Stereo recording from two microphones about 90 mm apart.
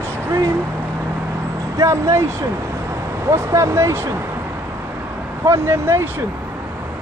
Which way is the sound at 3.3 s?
35° right (ahead or behind).